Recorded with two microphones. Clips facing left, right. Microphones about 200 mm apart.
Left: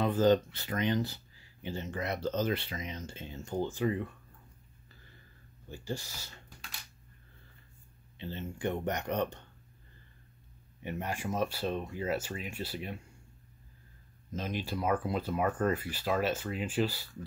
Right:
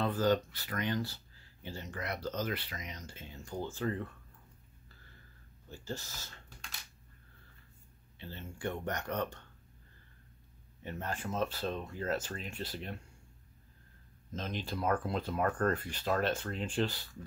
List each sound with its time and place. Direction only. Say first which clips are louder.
0.0 s speech: left 4 dB; 20° left (ahead or behind)
5.7 s speech: left 3 dB; 15° left (ahead or behind)
8.2 s speech: left 5 dB; 20° left (ahead or behind)
10.8 s speech: left 3 dB; 15° left (ahead or behind)
14.3 s speech: left 3 dB; 10° left (ahead or behind)